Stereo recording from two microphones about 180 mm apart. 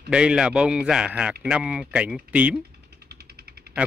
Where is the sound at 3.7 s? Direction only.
60° right (ahead or behind).